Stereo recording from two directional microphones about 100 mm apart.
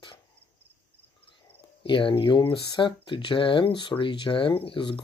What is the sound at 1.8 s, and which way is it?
Speech, 60° left (ahead or behind).